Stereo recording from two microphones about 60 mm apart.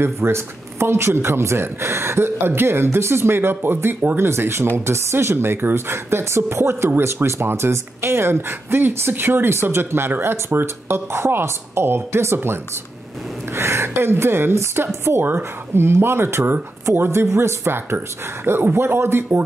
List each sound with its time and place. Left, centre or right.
0.0 s speech: right
4.2 s speech: right
13.6 s speech: right